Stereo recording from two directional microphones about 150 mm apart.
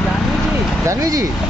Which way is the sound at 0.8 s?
20° right (ahead or behind).